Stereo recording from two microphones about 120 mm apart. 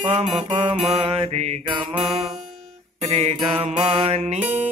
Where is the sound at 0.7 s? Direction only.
55° right (ahead or behind).